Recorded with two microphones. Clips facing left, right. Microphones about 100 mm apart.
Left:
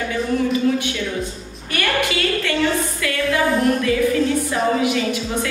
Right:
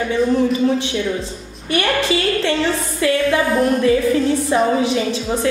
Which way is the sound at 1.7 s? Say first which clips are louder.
Right 4 dB; 25° right (ahead or behind).